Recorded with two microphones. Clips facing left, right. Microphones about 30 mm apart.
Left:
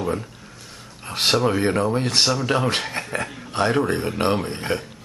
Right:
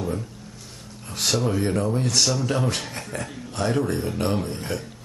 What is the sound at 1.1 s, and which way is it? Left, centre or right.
Speech, left.